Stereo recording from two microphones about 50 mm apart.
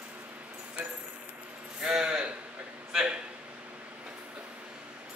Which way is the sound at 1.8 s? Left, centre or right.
Centre.